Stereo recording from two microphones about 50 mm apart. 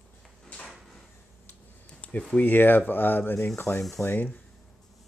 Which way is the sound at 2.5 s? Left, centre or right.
Left.